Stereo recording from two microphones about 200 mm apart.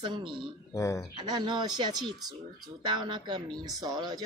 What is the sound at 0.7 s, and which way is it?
Speech, 15° left (ahead or behind).